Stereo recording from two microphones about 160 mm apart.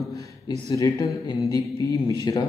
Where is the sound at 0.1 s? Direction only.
20° left (ahead or behind).